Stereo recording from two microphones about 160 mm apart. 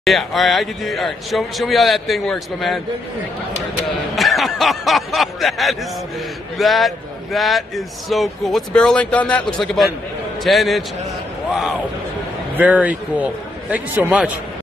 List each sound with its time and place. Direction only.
0.0 s a man's voice: centre (ahead or behind)
4.1 s a man's voice: centre (ahead or behind)
10.4 s a man's voice: centre (ahead or behind)
12.5 s a man's voice: 10° right (ahead or behind)